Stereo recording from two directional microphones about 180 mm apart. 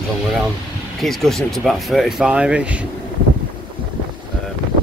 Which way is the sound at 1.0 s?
Centre (ahead or behind).